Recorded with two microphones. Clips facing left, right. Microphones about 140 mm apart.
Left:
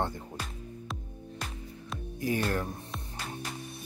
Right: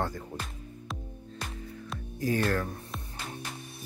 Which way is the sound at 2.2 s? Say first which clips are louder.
Right 2 dB; 15° left (ahead or behind).